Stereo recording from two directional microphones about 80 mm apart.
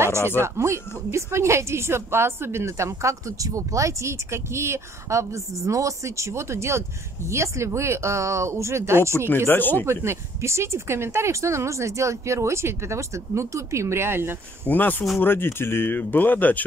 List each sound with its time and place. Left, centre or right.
0.4 s a woman's voice: right
9.5 s speech: left
9.8 s a woman's voice: right
14.7 s speech: left